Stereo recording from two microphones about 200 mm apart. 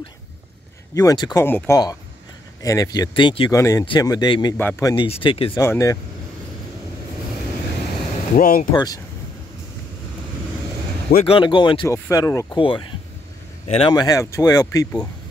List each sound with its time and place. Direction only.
0.9 s speech: 20° left (ahead or behind)
5.0 s speech: 30° left (ahead or behind)
5.6 s speech: 15° left (ahead or behind)
8.4 s speech: 45° left (ahead or behind)
8.7 s speech: 20° left (ahead or behind)
11.2 s speech: 25° left (ahead or behind)